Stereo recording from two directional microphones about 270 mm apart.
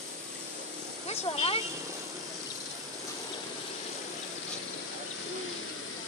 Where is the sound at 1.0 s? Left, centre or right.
Left.